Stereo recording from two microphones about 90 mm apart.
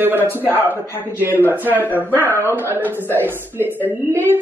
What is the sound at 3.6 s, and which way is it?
Speech, 20° left (ahead or behind).